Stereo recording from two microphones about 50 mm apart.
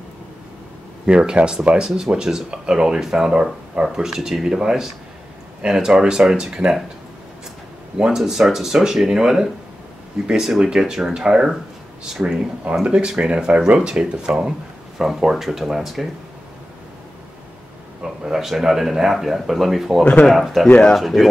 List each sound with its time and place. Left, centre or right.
1.0 s speech: right
8.2 s speech: centre
15.0 s speech: centre
18.0 s speech: centre
20.6 s speech: centre
21.0 s speech: centre